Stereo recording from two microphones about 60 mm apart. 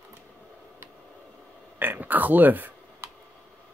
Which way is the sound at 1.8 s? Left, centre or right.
Right.